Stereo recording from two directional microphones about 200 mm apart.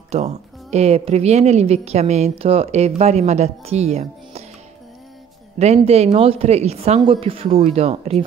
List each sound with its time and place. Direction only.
0.1 s a woman's voice: 35° right (ahead or behind)
5.6 s a woman's voice: 30° right (ahead or behind)